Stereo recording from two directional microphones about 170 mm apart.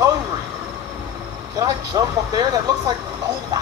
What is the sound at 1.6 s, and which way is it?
Speech, 20° right (ahead or behind).